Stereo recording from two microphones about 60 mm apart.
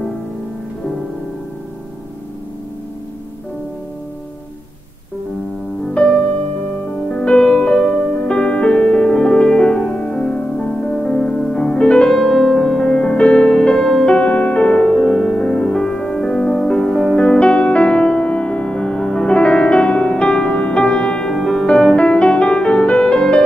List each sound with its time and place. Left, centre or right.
6.0 s music: centre
11.2 s music: centre